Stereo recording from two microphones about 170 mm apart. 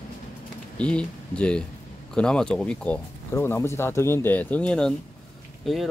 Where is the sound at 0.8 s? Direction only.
5° left (ahead or behind).